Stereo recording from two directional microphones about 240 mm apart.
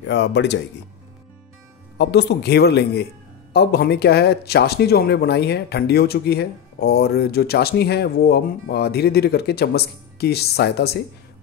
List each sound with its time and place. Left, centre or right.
0.0 s speech: left
2.0 s speech: left